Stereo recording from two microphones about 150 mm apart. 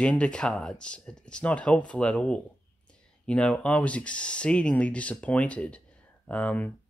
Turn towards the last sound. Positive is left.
turn(degrees=10)  # may be behind; listen again after turning